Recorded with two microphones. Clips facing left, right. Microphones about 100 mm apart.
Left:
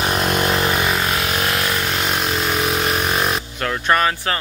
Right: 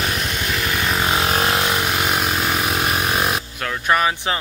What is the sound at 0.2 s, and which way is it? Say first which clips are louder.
Vehicle: left 6 dB; 55° left (ahead or behind).